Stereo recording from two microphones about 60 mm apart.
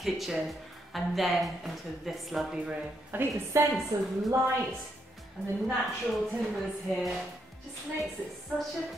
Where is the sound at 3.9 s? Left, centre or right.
Right.